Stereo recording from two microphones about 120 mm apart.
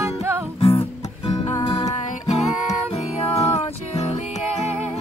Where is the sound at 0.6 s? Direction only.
55° left (ahead or behind).